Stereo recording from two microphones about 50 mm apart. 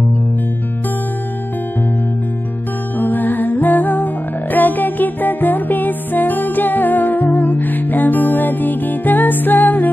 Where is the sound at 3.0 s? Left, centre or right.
Left.